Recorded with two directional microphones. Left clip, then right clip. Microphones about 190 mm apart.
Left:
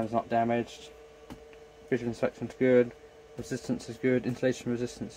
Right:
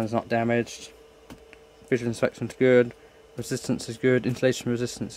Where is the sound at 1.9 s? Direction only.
50° right (ahead or behind).